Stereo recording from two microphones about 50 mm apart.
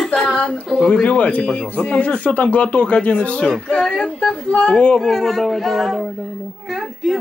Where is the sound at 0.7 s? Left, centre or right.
Centre.